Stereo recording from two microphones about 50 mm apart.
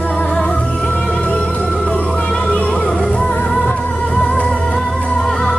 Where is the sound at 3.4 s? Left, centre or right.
Left.